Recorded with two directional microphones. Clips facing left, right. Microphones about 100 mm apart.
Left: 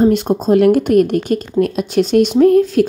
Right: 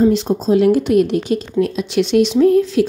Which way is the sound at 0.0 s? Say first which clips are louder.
Left 1 dB; 55° left (ahead or behind).